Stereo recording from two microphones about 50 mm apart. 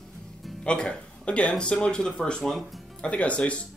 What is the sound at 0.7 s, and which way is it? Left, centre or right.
Speech, left.